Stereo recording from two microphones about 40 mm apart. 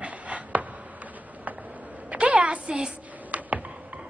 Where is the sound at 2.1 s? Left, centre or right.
Right.